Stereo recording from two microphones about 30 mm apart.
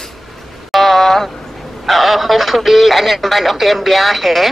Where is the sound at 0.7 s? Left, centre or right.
Centre.